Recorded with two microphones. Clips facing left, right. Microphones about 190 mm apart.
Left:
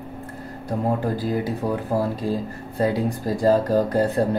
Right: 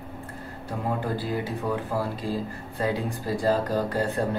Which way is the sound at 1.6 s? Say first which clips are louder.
Left 2 dB; 35° left (ahead or behind).